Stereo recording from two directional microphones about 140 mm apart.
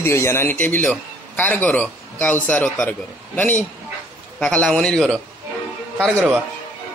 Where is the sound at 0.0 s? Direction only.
20° left (ahead or behind).